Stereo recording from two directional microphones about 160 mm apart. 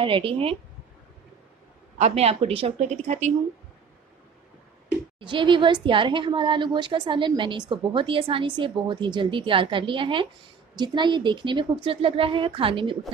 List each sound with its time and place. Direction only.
0.0 s a woman's voice: 35° right (ahead or behind)
2.0 s speech: 45° right (ahead or behind)
5.2 s a woman's voice: 30° right (ahead or behind)